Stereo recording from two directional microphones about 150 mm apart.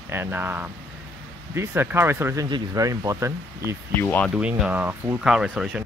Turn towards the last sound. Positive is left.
turn(degrees=-5)  # may be behind; listen again after turning